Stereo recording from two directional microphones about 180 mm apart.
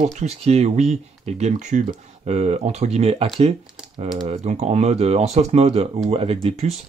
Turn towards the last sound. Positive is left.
turn(degrees=-30)  # may be behind; listen again after turning